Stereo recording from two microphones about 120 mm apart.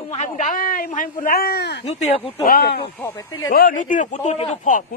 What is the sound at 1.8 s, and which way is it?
Speech, 55° left (ahead or behind).